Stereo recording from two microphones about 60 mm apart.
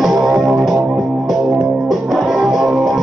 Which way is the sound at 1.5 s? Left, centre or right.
Centre.